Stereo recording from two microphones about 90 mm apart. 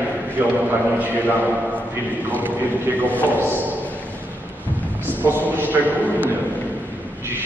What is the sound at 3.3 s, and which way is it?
Speech, 25° right (ahead or behind).